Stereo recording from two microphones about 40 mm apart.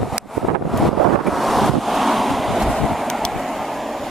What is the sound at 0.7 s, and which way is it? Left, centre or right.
Waves, centre.